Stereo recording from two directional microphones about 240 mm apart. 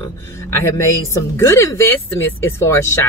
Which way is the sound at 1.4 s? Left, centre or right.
Centre.